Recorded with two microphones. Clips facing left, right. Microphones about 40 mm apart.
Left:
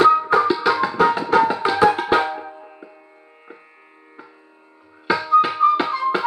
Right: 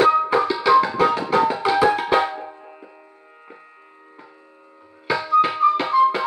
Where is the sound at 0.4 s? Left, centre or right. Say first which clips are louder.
Right 1 dB; left.